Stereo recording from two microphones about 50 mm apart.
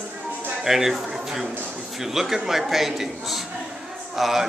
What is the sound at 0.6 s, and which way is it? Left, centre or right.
A man's voice, centre.